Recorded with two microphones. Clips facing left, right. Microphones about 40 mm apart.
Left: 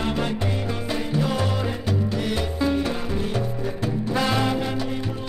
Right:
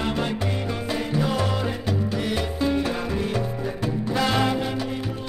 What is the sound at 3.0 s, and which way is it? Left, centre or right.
Music, right.